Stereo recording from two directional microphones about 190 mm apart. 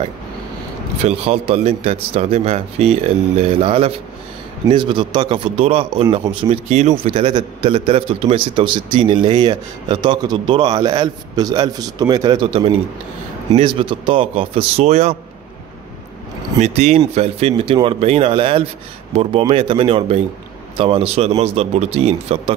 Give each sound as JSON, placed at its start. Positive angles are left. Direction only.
{"t": 1.0, "sound": "a man's voice", "side_deg": -30}
{"t": 16.5, "sound": "a man's voice", "side_deg": -35}